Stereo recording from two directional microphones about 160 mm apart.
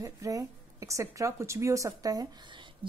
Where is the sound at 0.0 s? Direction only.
20° right (ahead or behind).